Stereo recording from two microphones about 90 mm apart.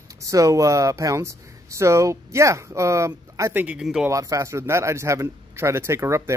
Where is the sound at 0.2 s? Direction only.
35° right (ahead or behind).